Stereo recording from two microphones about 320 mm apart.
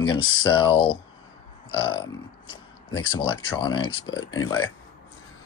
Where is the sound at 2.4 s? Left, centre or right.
Left.